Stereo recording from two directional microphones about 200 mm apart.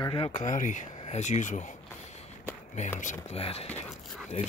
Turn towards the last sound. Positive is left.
turn(degrees=35)  # may be behind; listen again after turning